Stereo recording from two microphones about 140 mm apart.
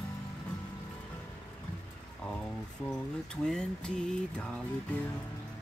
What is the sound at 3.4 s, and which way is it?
Music, 5° left (ahead or behind).